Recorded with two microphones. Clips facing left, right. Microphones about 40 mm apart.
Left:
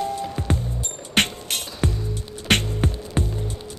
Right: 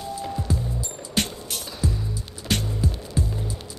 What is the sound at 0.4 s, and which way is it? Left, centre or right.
Music, left.